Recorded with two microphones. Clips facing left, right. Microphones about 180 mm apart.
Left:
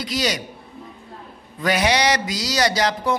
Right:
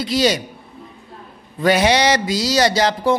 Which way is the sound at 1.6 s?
30° right (ahead or behind).